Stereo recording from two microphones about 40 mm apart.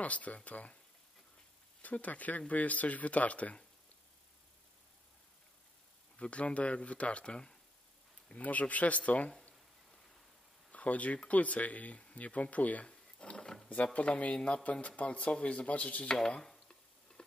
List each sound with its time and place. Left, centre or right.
0.0 s speech: left
1.8 s speech: left
6.1 s speech: left
8.3 s speech: left
10.7 s speech: left
12.8 s a sound: left
13.9 s speech: left
16.2 s speech: centre